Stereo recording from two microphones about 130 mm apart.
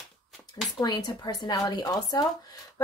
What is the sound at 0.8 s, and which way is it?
A woman's voice, 30° left (ahead or behind).